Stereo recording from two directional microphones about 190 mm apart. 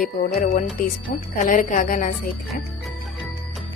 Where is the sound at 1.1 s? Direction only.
55° left (ahead or behind).